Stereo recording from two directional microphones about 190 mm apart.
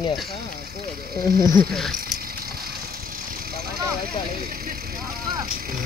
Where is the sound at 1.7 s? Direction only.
Centre (ahead or behind).